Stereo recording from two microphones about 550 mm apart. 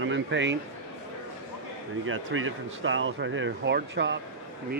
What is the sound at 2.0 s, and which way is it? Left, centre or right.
Speech, right.